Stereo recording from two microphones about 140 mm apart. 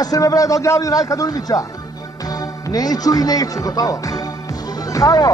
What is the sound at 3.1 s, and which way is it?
Speech, 25° left (ahead or behind).